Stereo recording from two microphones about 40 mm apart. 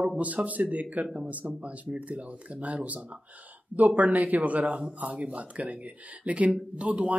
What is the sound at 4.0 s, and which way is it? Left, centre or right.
Speech, right.